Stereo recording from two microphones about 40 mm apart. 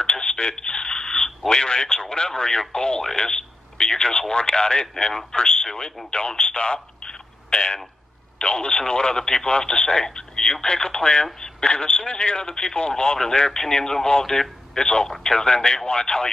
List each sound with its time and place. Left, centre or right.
0.0 s telephone: left
1.5 s speech: centre